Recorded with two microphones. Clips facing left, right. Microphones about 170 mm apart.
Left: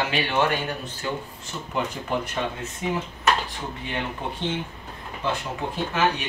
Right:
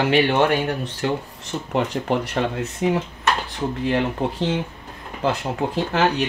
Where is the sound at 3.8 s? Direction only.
80° right.